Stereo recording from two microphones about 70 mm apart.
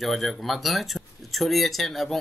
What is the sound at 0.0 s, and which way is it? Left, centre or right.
Speech, centre.